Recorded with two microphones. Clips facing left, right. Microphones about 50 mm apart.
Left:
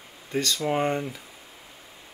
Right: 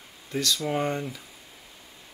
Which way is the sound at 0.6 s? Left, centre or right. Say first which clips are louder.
Left 5 dB; left.